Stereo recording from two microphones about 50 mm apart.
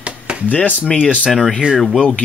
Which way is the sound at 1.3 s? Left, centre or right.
Centre.